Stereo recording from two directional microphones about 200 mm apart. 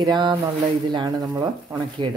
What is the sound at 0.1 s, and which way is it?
Speech, 25° right (ahead or behind).